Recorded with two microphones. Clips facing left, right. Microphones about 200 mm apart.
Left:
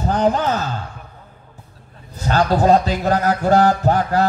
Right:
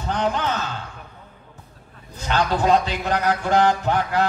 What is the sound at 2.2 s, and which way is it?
Speech, 40° left (ahead or behind).